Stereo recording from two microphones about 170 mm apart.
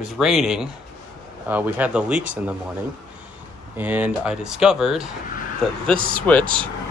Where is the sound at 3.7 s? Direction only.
10° right (ahead or behind).